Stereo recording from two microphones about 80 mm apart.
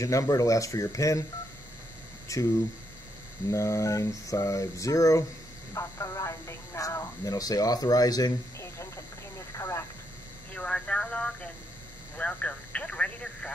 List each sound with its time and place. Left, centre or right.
0.0 s mantra: left
2.3 s mantra: left
5.8 s speech: left
8.5 s a sound: left
10.5 s radio: centre
12.2 s telephone: centre